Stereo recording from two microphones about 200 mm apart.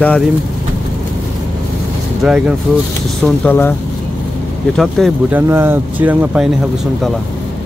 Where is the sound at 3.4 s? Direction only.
10° left (ahead or behind).